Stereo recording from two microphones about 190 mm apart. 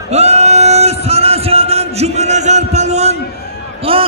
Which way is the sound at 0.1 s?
35° right (ahead or behind).